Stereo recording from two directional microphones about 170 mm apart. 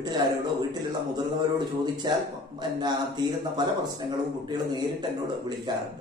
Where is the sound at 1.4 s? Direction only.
25° right (ahead or behind).